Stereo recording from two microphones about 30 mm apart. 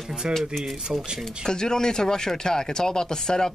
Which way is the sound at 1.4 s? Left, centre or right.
Left.